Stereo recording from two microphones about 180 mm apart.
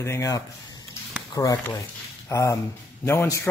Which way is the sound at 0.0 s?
15° left (ahead or behind).